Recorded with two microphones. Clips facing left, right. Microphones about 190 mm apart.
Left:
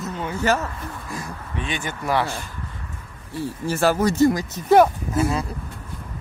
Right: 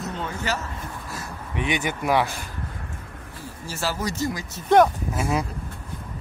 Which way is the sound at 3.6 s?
55° left (ahead or behind).